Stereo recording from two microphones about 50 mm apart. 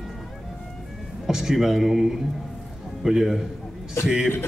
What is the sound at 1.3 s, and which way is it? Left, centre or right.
Speech, centre.